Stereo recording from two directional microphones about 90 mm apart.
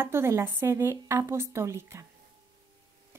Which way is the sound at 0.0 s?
25° right (ahead or behind).